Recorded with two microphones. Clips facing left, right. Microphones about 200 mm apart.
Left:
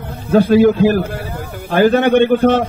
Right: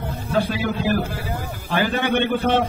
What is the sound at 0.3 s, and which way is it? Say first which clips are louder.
A man's voice: left 13 dB; 45° left (ahead or behind).